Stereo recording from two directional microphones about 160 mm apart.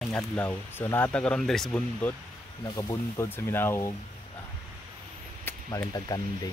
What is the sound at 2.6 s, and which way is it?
Speech, 25° left (ahead or behind).